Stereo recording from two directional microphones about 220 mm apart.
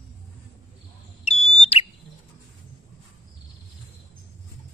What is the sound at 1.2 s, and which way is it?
Bird, 30° left (ahead or behind).